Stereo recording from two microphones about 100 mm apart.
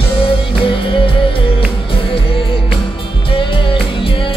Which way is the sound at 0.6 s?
60° left (ahead or behind).